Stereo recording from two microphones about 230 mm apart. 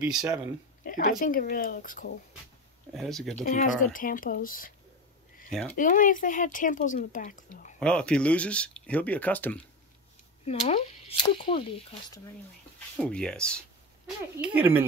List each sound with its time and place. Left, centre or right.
0.8 s speech: left
2.9 s speech: centre
3.4 s speech: left
5.5 s speech: centre
5.8 s speech: left
7.8 s speech: centre
10.4 s speech: left
12.7 s speech: centre
14.4 s speech: centre